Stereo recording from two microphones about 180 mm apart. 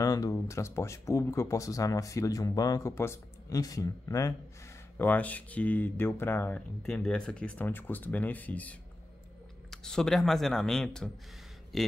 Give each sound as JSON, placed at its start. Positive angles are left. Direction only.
{"t": 0.0, "sound": "speech", "side_deg": 20}